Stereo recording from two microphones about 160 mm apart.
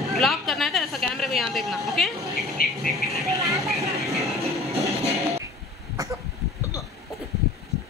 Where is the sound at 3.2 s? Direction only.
20° right (ahead or behind).